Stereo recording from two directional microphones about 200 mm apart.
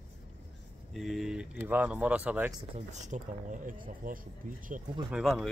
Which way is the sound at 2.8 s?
35° right (ahead or behind).